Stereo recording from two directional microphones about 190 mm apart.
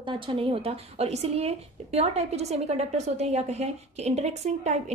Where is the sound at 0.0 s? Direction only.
25° right (ahead or behind).